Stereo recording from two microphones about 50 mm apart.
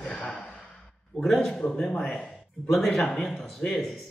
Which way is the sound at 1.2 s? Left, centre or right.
Centre.